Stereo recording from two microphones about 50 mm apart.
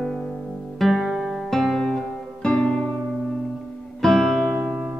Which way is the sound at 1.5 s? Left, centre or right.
Centre.